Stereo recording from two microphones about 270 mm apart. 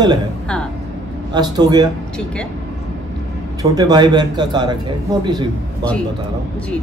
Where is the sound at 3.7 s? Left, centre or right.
Centre.